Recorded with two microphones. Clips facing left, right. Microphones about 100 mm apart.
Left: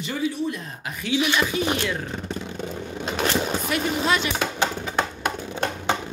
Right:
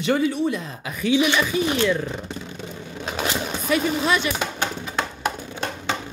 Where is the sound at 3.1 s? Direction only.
5° right (ahead or behind).